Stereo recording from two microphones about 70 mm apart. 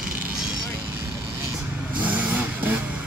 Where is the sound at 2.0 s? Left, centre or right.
Right.